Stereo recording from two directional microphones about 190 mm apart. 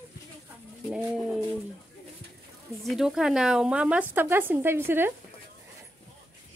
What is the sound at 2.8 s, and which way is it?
A woman's voice, centre (ahead or behind).